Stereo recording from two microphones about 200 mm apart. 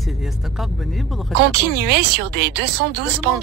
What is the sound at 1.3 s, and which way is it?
Speech, 55° right (ahead or behind).